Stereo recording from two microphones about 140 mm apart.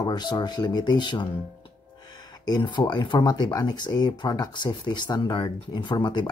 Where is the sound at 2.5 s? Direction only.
30° left (ahead or behind).